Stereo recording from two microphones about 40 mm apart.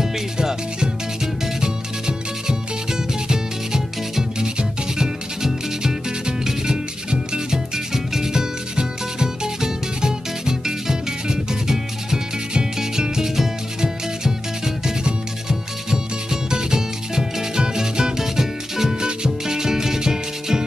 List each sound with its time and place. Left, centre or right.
0.0 s music: centre
15.4 s music: centre